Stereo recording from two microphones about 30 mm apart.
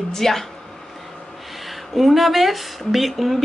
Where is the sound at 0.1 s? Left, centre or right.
Centre.